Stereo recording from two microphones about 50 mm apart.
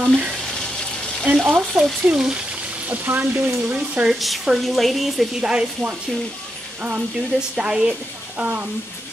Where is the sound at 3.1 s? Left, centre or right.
Right.